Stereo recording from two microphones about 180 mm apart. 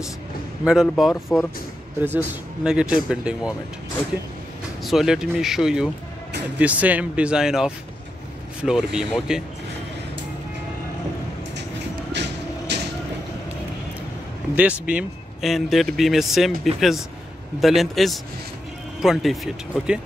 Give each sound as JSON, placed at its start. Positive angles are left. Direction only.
{"t": 0.7, "sound": "speech", "side_deg": 0}
{"t": 4.8, "sound": "speech", "side_deg": -5}
{"t": 12.1, "sound": "vehicle", "side_deg": -70}
{"t": 14.5, "sound": "speech", "side_deg": -5}